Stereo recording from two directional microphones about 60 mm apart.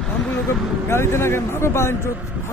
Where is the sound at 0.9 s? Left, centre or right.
Left.